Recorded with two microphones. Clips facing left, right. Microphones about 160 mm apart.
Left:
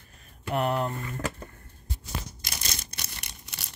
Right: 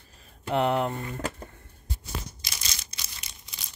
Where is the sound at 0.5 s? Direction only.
25° right (ahead or behind).